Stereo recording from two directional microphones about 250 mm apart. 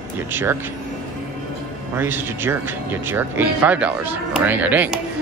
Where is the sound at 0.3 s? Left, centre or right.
Centre.